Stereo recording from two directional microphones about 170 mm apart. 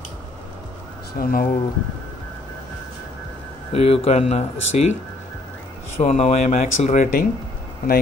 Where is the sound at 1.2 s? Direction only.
60° left (ahead or behind).